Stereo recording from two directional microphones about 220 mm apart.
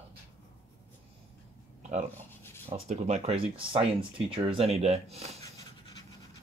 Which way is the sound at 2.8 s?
30° right (ahead or behind).